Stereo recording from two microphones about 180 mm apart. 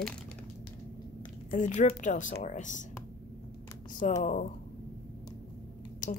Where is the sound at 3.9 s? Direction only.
45° left (ahead or behind).